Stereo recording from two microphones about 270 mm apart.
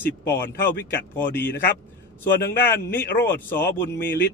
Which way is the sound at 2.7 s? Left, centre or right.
Centre.